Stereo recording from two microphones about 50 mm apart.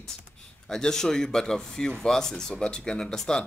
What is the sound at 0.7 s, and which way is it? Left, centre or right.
Speech, centre.